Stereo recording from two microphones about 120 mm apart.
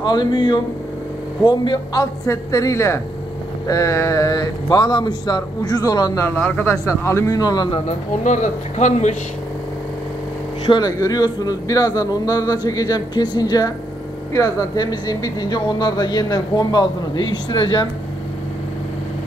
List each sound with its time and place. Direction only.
0.0 s speech: 40° left (ahead or behind)
6.3 s speech: 10° left (ahead or behind)
6.9 s speech: 25° left (ahead or behind)
8.2 s speech: 85° left
10.7 s speech: 35° left (ahead or behind)